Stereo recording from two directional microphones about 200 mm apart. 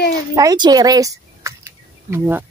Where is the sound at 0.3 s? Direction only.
15° right (ahead or behind).